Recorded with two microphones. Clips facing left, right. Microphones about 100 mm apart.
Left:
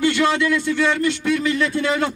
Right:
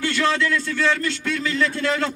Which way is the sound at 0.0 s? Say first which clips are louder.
Left 3 dB; 20° left (ahead or behind).